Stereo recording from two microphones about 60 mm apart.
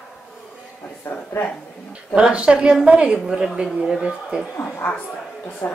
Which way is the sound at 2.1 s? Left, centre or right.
Centre.